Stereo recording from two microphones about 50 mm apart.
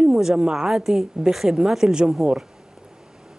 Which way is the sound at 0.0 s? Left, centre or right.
Centre.